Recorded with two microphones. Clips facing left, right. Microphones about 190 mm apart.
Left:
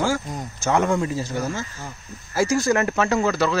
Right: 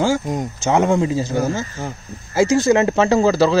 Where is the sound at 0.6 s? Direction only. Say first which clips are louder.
Right 4 dB; 20° right (ahead or behind).